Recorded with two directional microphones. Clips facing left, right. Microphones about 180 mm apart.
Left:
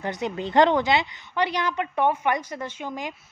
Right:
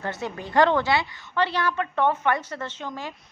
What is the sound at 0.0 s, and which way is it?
A woman's voice, 15° left (ahead or behind).